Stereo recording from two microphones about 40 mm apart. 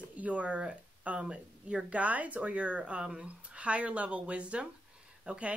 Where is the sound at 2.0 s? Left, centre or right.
Right.